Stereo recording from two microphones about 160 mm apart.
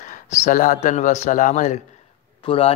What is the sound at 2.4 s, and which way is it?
Speech, 35° left (ahead or behind).